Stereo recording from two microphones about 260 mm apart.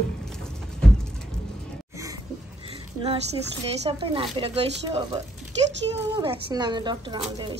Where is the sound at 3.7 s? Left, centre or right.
Right.